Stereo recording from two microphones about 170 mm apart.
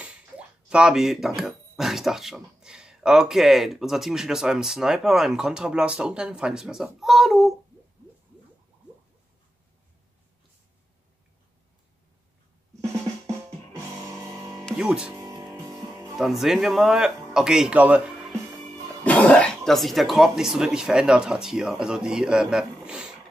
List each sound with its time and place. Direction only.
0.7 s speech: 5° right (ahead or behind)
14.3 s music: 20° right (ahead or behind)
14.7 s music: 5° right (ahead or behind)
15.1 s music: 20° right (ahead or behind)
16.2 s speech: centre (ahead or behind)
19.0 s speech: 10° left (ahead or behind)